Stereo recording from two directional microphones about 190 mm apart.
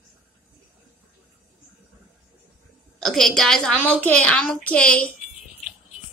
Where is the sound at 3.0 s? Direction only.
Centre (ahead or behind).